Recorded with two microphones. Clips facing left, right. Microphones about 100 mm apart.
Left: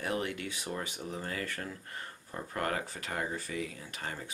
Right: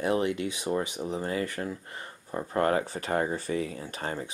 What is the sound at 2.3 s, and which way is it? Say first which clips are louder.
Speech: right 9 dB; 30° right (ahead or behind).